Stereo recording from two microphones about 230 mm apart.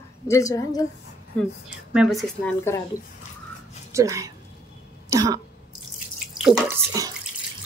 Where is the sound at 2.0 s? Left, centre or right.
Centre.